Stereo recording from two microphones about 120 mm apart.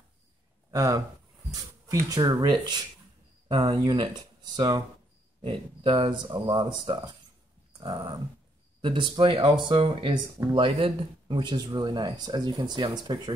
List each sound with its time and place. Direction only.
0.7 s speech: 30° right (ahead or behind)
5.5 s speech: 45° right (ahead or behind)
7.7 s dog: 45° right (ahead or behind)
8.8 s speech: 40° right (ahead or behind)